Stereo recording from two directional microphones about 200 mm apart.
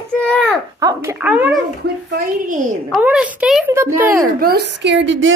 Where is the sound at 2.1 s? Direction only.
40° right (ahead or behind).